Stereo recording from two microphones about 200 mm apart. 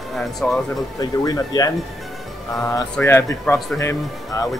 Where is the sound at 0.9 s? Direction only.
20° left (ahead or behind).